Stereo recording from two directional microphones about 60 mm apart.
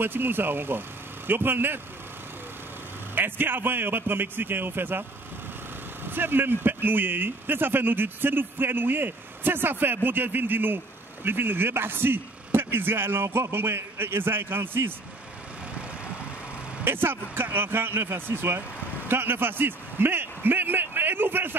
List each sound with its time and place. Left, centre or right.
0.0 s speech: right
3.2 s speech: right
6.0 s speech: right
16.8 s a man's voice: right